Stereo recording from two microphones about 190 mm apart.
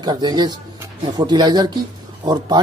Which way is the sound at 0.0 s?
20° right (ahead or behind).